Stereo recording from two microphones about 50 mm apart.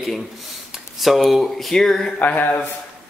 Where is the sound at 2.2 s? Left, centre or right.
Left.